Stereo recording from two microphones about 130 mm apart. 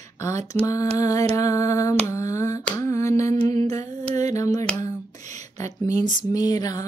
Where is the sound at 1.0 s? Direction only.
25° left (ahead or behind).